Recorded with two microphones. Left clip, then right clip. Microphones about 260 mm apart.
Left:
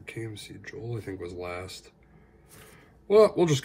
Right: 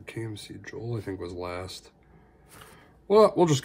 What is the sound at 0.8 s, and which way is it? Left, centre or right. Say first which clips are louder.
Speech: right 2 dB; centre.